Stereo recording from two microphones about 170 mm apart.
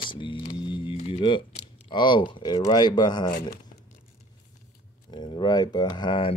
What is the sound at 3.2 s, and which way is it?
Speech, 50° left (ahead or behind).